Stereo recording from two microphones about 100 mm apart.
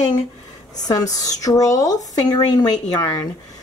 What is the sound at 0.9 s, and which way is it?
Speech, 40° left (ahead or behind).